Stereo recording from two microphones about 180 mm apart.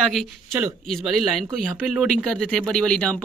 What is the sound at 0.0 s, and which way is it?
Speech, centre (ahead or behind).